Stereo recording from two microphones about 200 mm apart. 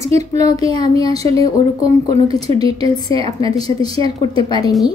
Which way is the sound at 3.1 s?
30° right (ahead or behind).